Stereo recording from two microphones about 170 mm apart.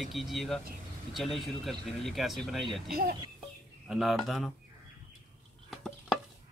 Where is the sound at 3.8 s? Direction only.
Centre (ahead or behind).